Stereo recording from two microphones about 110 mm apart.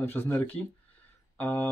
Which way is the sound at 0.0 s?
20° left (ahead or behind).